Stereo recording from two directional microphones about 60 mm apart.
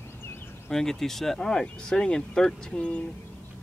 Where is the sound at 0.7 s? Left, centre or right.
Centre.